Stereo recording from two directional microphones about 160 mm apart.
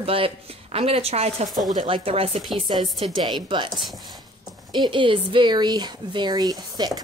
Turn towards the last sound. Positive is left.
turn(degrees=-25)  # may be behind; listen again after turning